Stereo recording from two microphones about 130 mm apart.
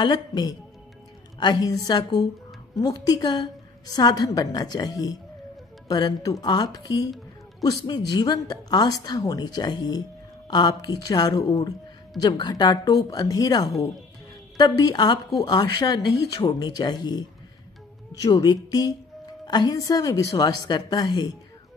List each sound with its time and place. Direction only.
0.0 s a woman's voice: 35° left (ahead or behind)
18.2 s a woman's voice: 30° left (ahead or behind)